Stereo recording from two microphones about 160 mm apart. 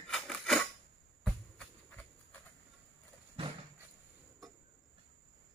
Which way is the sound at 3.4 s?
35° right (ahead or behind).